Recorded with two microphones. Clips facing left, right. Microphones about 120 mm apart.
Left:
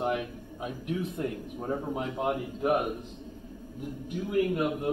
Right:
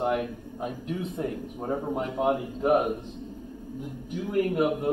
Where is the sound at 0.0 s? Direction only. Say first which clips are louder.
Right 3 dB; 55° right (ahead or behind).